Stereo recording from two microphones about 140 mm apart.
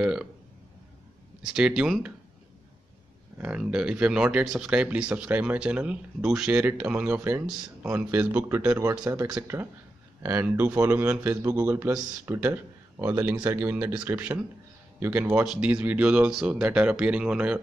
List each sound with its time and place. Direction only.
0.0 s speech: 5° right (ahead or behind)
1.4 s speech: 5° right (ahead or behind)
3.3 s speech: 10° right (ahead or behind)